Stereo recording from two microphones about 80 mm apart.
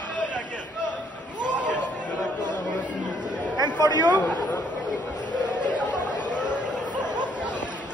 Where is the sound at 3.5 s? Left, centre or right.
Right.